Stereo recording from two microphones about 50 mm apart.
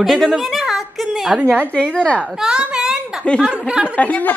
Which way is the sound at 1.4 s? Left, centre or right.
Right.